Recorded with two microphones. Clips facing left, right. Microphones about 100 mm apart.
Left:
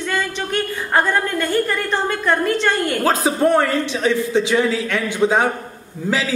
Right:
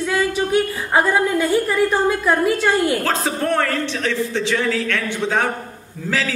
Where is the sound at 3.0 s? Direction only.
15° left (ahead or behind).